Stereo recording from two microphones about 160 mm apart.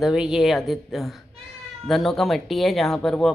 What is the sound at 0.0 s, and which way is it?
Speech, 5° right (ahead or behind).